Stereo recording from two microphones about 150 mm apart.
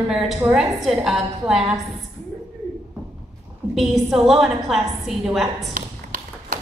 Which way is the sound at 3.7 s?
Centre (ahead or behind).